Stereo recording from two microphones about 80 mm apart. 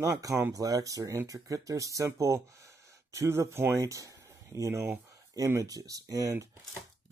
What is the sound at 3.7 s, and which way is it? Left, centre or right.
Speech, right.